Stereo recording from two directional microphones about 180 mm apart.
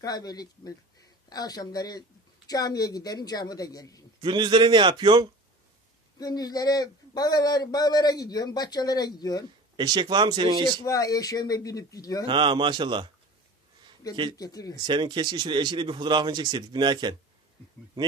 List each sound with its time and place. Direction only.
0.0 s speech: 20° left (ahead or behind)
4.2 s speech: 25° right (ahead or behind)
6.1 s speech: 20° left (ahead or behind)
9.8 s speech: 25° right (ahead or behind)
10.8 s speech: 20° left (ahead or behind)
12.3 s speech: 25° right (ahead or behind)
14.3 s speech: 20° left (ahead or behind)
14.9 s speech: 25° right (ahead or behind)